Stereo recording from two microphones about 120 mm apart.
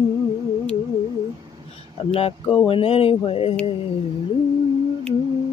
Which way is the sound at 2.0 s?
55° left (ahead or behind).